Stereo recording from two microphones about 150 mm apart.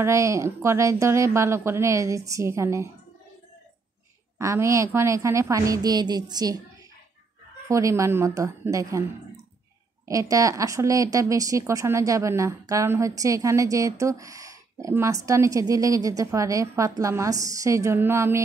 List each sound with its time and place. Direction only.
0.0 s speech: 20° right (ahead or behind)
4.4 s speech: 20° right (ahead or behind)
7.6 s speech: 20° right (ahead or behind)
10.0 s speech: 20° right (ahead or behind)